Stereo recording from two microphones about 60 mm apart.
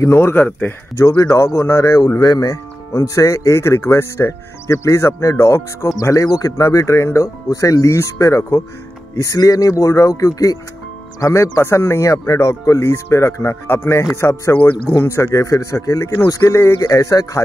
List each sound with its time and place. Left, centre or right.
0.0 s speech: left
0.9 s speech: left
1.3 s speech: left
2.3 s speech: left
2.9 s speech: left
5.9 s speech: left
9.1 s speech: left
14.5 s speech: left
15.0 s speech: left
16.8 s speech: left